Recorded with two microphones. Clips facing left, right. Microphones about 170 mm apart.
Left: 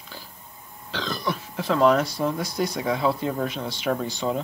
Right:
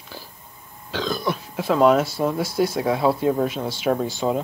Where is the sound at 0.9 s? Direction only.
Centre (ahead or behind).